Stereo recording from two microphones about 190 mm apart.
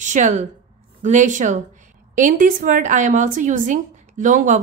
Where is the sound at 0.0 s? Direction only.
40° right (ahead or behind).